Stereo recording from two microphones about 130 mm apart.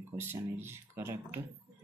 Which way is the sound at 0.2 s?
15° right (ahead or behind).